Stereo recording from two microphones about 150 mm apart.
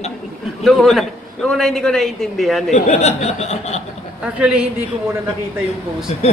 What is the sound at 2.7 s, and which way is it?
Speech, 50° left (ahead or behind).